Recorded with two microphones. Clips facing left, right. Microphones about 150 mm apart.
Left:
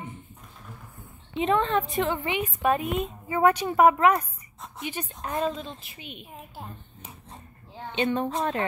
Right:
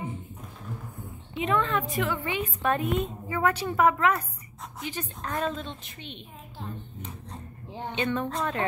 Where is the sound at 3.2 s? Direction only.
20° left (ahead or behind).